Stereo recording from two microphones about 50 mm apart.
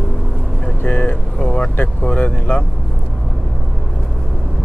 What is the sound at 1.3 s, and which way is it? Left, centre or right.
Speech, centre.